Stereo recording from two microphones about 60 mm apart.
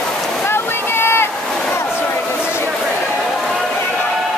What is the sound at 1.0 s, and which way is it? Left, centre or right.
Boat, left.